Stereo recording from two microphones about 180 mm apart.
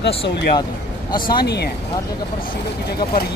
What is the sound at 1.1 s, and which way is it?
Speech, 55° left (ahead or behind).